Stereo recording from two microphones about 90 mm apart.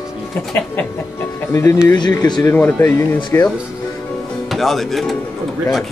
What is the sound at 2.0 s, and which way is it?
Speech, 55° left (ahead or behind).